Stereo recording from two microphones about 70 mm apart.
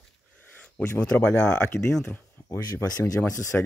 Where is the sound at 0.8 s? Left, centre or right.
Centre.